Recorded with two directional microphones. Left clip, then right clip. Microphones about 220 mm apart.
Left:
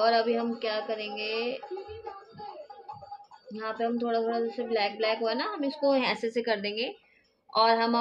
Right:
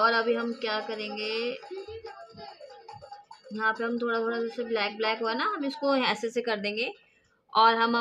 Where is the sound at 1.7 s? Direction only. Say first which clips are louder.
Left 1 dB; 45° right (ahead or behind).